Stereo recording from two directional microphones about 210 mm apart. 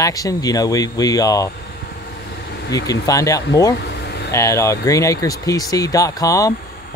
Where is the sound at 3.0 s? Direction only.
15° left (ahead or behind).